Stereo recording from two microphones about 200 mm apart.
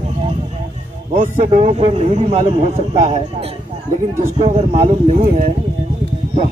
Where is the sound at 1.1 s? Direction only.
35° right (ahead or behind).